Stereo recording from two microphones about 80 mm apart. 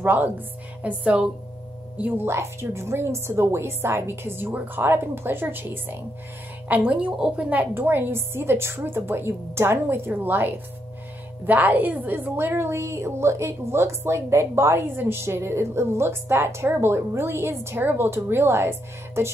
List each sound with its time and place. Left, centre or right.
0.0 s a woman's voice: right
6.7 s a woman's voice: centre